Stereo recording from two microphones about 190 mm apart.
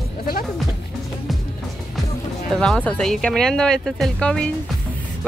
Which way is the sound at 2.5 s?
5° left (ahead or behind).